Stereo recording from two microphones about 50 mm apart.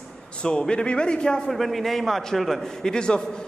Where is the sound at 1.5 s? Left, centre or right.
Centre.